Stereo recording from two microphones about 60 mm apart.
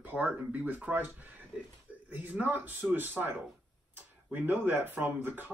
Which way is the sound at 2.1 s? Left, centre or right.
Right.